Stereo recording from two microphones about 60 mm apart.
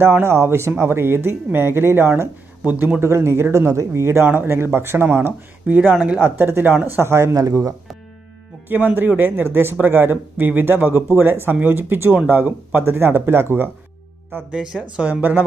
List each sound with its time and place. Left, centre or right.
0.0 s speech: right
2.6 s speech: right
3.0 s speech: right
5.7 s speech: right
6.4 s speech: right
7.1 s speech: right
7.4 s speech: right
8.6 s speech: right
14.5 s speech: centre
15.0 s speech: right